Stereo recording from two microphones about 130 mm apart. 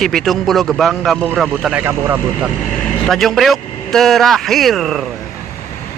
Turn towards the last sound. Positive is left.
turn(degrees=0)  # may be behind; listen again after turning